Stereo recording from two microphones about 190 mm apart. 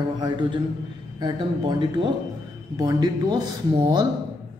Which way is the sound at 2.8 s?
20° right (ahead or behind).